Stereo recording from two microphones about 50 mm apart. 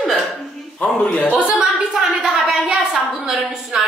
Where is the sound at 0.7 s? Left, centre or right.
Left.